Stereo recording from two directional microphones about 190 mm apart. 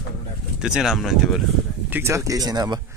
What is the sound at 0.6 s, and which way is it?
Speech, 5° right (ahead or behind).